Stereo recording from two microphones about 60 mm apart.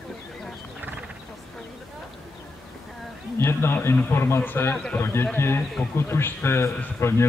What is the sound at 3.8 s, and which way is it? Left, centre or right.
A man's voice, left.